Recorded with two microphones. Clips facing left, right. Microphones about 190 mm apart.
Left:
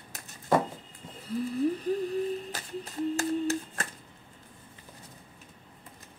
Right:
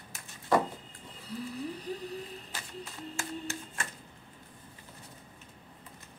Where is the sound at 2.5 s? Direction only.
40° left (ahead or behind).